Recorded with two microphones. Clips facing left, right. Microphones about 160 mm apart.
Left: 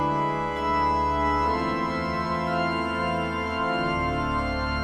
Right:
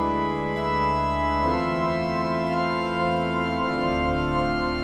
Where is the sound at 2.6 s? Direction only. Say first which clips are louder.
Right 2 dB; 25° right (ahead or behind).